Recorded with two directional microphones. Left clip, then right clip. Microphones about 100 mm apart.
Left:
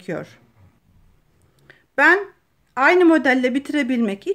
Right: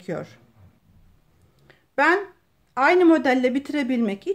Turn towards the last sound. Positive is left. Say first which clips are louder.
# left 2 dB
turn(degrees=35)  # may be behind; listen again after turning